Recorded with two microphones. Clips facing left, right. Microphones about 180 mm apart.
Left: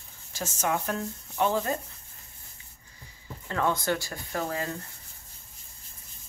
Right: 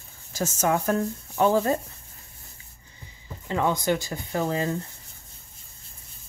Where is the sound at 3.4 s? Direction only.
15° right (ahead or behind).